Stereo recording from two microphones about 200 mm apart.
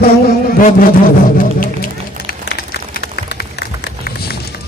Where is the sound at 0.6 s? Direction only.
40° left (ahead or behind).